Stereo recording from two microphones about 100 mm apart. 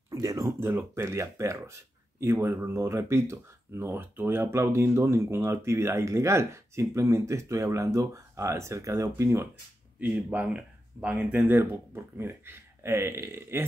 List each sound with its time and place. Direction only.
0.1 s speech: 35° right (ahead or behind)
9.9 s speech: 15° right (ahead or behind)